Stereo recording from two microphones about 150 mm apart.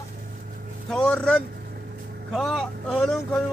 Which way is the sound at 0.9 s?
5° left (ahead or behind).